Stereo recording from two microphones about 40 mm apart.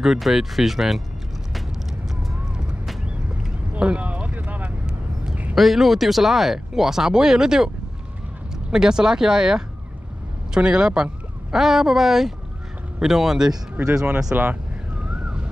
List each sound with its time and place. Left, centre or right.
0.0 s speech: centre
4.0 s a sound: right
5.6 s speech: centre
8.7 s speech: centre
11.5 s speech: centre
13.8 s speech: right
15.2 s a sound: right